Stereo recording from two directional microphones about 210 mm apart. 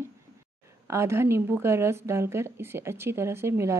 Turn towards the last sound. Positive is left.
turn(degrees=-15)  # may be behind; listen again after turning